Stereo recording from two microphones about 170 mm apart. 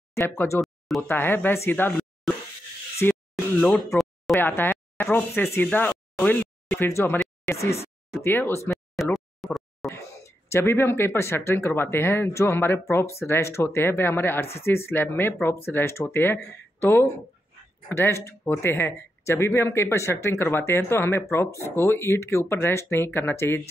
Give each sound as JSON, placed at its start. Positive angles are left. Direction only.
{"t": 0.1, "sound": "speech", "side_deg": 15}
{"t": 0.6, "sound": "a sound", "side_deg": 0}
{"t": 1.0, "sound": "speech", "side_deg": 10}
{"t": 3.6, "sound": "a sound", "side_deg": 10}
{"t": 4.4, "sound": "speech", "side_deg": 10}
{"t": 7.5, "sound": "speech", "side_deg": 35}
{"t": 8.2, "sound": "speech", "side_deg": 10}
{"t": 9.1, "sound": "a sound", "side_deg": 0}
{"t": 9.8, "sound": "speech", "side_deg": 20}